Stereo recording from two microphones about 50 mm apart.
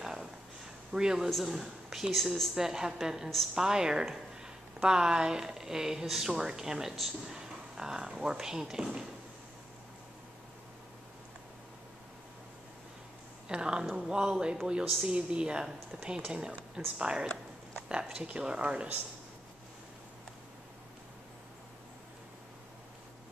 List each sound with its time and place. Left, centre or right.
0.0 s a sound: centre
0.9 s speech: centre
2.1 s speech: centre
2.5 s speech: centre
13.5 s speech: centre